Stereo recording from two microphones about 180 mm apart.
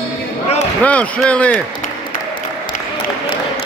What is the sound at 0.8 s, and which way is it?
Speech, 5° left (ahead or behind).